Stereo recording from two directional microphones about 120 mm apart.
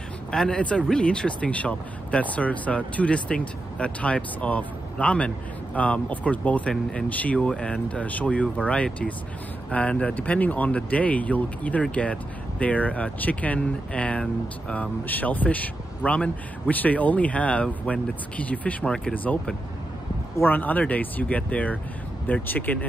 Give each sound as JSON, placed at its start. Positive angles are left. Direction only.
{"t": 0.3, "sound": "speech", "side_deg": 5}